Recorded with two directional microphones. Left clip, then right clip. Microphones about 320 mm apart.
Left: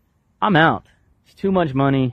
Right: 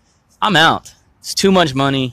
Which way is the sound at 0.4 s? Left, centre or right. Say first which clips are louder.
Right 4 dB; centre.